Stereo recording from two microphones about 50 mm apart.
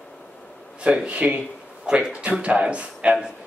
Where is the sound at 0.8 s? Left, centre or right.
Right.